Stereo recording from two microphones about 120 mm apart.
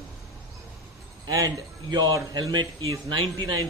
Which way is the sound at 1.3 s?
30° right (ahead or behind).